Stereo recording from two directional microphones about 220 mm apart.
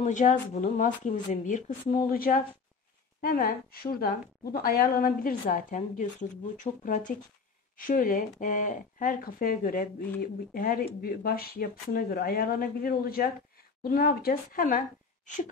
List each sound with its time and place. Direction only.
0.0 s a woman's voice: 35° left (ahead or behind)